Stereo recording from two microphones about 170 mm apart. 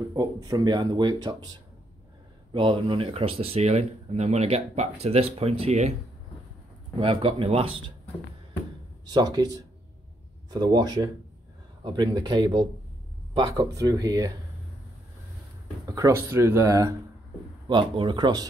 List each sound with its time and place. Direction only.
0.1 s speech: 20° right (ahead or behind)
2.5 s speech: 30° right (ahead or behind)
7.0 s speech: 30° right (ahead or behind)
9.1 s speech: 25° right (ahead or behind)
15.9 s speech: 15° right (ahead or behind)